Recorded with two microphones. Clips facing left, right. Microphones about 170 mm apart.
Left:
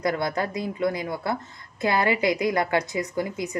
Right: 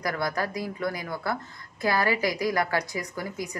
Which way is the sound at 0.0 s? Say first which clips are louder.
Left 3 dB; 25° left (ahead or behind).